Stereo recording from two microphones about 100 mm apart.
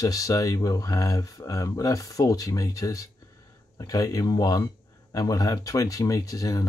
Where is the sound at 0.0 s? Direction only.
35° left (ahead or behind).